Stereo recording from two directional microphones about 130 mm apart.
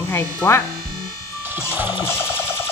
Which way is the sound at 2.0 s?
20° left (ahead or behind).